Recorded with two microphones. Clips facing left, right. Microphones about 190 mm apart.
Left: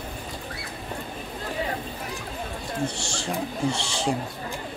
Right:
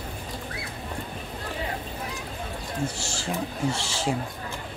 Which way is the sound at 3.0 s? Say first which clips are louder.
Left 1 dB; 5° right (ahead or behind).